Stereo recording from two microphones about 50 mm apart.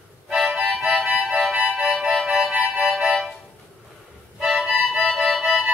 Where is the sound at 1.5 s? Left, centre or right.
Centre.